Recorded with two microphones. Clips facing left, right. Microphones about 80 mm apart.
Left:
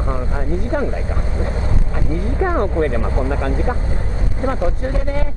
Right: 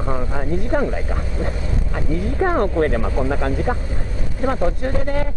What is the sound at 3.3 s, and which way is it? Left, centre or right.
Speech, centre.